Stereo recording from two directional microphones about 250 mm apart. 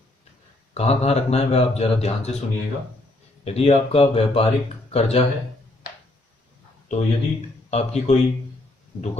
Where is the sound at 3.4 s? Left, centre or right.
Left.